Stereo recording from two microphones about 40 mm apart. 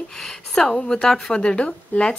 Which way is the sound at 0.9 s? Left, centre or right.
Left.